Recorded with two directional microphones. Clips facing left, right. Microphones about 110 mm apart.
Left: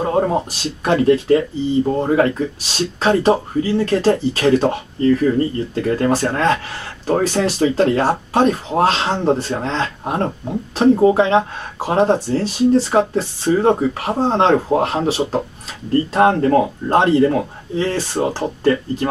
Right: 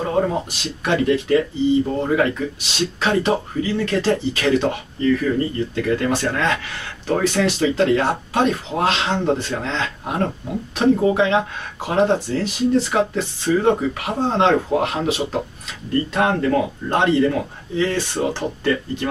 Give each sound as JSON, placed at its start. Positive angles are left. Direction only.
{"t": 0.3, "sound": "speech", "side_deg": 35}